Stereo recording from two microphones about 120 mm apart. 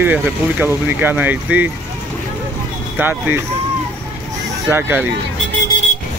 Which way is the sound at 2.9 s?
15° right (ahead or behind).